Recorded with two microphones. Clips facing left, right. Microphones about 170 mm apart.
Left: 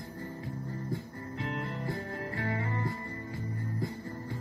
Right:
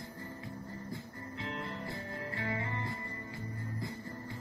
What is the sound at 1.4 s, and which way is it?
Music, 45° left (ahead or behind).